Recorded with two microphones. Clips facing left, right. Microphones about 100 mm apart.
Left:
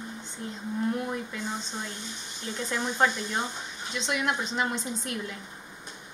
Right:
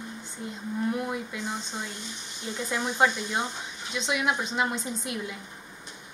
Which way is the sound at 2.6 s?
5° right (ahead or behind).